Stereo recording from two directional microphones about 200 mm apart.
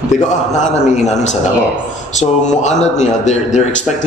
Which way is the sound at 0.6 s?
35° left (ahead or behind).